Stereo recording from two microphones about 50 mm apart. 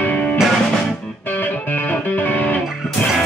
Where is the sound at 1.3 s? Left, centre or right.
Left.